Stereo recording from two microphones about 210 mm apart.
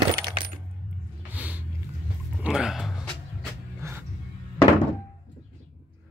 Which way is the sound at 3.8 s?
10° right (ahead or behind).